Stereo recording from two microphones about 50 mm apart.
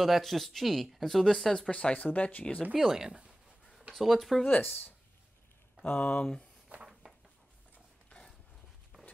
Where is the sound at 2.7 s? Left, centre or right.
Centre.